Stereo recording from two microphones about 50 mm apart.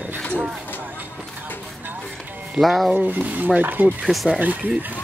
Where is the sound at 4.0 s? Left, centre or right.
Centre.